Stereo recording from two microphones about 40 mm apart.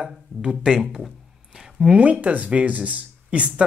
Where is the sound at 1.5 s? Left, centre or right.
Centre.